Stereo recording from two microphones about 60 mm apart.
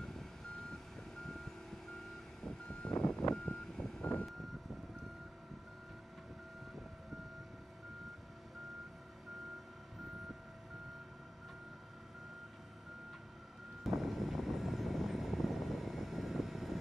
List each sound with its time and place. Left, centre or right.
0.0 s reversing beeps: centre
1.2 s vehicle: centre
2.4 s reversing beeps: centre
4.0 s reversing beeps: left
13.8 s vehicle: centre